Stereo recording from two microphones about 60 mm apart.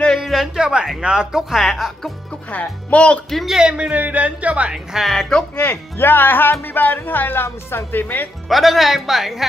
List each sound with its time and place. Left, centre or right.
0.2 s speech: centre
2.5 s speech: left
3.4 s speech: centre
4.9 s speech: centre
5.7 s speech: left
8.5 s speech: centre